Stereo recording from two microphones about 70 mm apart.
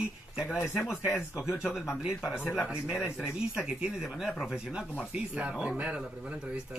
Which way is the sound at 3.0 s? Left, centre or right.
Centre.